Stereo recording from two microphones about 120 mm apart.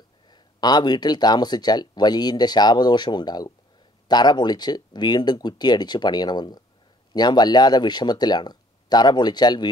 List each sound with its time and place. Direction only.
0.3 s speech: 35° left (ahead or behind)